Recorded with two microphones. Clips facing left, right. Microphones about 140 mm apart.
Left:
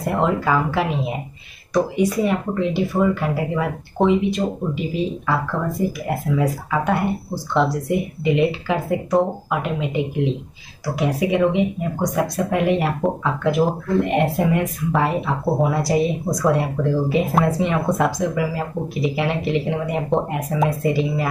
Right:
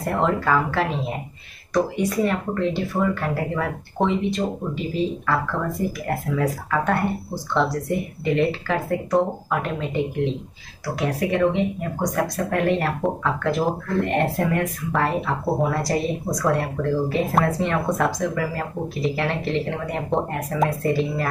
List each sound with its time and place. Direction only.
0.0 s speech: 10° left (ahead or behind)